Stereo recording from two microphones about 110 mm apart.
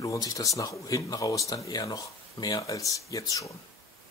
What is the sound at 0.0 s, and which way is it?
Speech, 30° left (ahead or behind).